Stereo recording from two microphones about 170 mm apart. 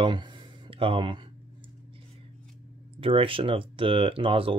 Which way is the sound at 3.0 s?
30° right (ahead or behind).